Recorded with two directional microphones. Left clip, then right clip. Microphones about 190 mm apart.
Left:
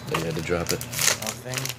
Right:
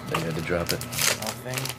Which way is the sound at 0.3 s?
45° left (ahead or behind).